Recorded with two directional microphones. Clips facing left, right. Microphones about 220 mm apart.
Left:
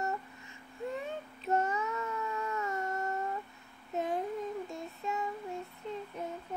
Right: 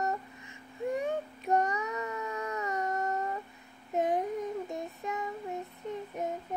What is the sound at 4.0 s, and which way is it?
Child singing, 20° right (ahead or behind).